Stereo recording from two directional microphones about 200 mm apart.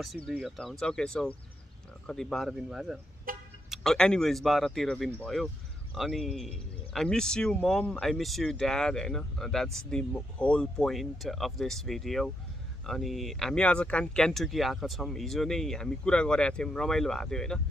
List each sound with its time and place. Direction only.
0.3 s speech: centre (ahead or behind)
3.3 s vehicle: 45° right (ahead or behind)
3.7 s speech: 5° left (ahead or behind)